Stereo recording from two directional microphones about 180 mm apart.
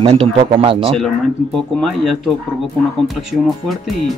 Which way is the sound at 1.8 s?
Centre (ahead or behind).